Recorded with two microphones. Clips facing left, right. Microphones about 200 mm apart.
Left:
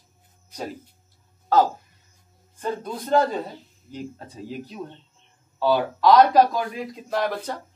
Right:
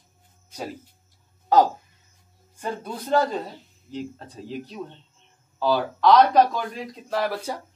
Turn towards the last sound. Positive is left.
turn(degrees=-10)  # may be behind; listen again after turning